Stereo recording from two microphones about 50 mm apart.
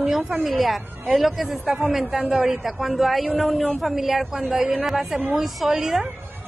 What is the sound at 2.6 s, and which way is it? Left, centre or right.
A woman's voice, centre.